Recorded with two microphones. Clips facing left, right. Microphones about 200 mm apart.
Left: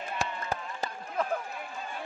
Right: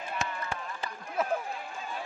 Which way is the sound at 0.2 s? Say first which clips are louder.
Left 3 dB; 35° left (ahead or behind).